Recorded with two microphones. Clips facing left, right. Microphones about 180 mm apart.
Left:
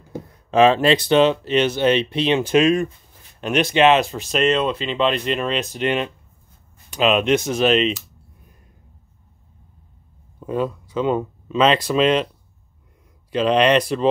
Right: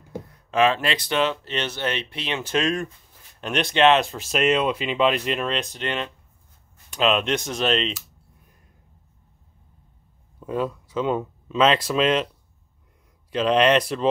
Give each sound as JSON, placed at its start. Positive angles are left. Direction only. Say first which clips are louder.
{"t": 0.5, "sound": "speech", "louder": "left 6 dB", "side_deg": 30}
{"t": 10.4, "sound": "speech", "louder": "left 3 dB", "side_deg": 0}
{"t": 13.3, "sound": "speech", "louder": "left 2 dB", "side_deg": 0}